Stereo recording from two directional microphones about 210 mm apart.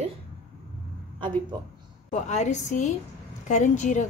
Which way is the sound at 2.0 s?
35° left (ahead or behind).